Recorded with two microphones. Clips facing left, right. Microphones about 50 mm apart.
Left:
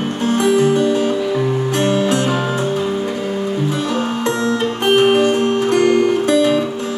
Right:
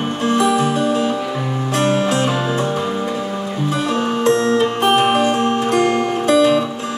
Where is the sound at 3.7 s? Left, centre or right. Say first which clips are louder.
Even; right.